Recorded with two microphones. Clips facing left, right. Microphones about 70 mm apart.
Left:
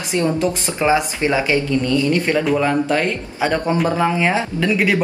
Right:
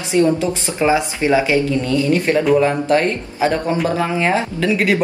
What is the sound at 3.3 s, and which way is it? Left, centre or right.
Speech, centre.